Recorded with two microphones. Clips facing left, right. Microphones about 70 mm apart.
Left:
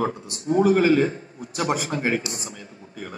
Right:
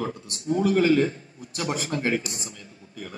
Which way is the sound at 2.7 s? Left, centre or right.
Left.